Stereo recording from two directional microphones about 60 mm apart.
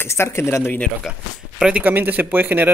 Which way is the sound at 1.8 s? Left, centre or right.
Right.